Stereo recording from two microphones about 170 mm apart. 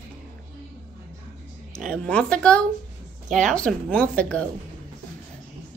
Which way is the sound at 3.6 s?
10° left (ahead or behind).